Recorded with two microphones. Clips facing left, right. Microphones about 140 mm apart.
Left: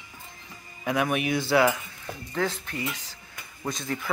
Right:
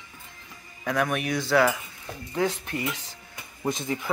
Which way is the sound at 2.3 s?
20° right (ahead or behind).